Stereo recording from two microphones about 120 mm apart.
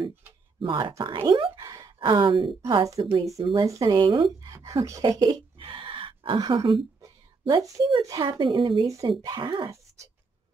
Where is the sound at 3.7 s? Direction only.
30° right (ahead or behind).